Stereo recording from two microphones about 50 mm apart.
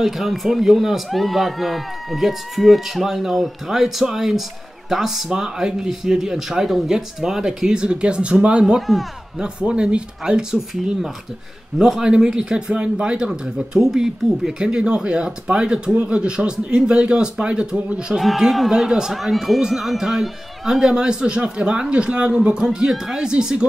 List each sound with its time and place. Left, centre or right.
0.0 s a man's voice: centre
11.8 s a man's voice: centre
18.2 s a man's voice: centre